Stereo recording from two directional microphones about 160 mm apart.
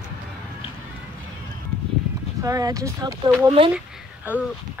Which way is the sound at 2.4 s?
20° right (ahead or behind).